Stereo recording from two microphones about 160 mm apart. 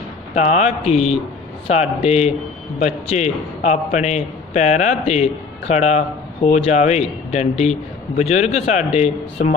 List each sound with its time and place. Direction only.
0.3 s a man's voice: 45° left (ahead or behind)